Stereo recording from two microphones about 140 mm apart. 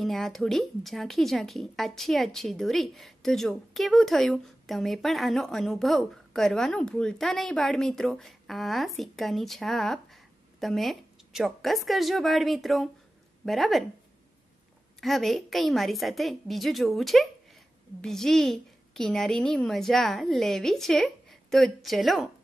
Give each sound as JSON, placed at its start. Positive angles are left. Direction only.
{"t": 0.0, "sound": "a woman's voice", "side_deg": 0}
{"t": 15.0, "sound": "a woman's voice", "side_deg": 0}